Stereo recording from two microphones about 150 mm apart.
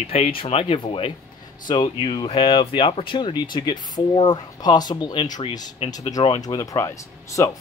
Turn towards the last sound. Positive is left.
turn(degrees=20)  # may be behind; listen again after turning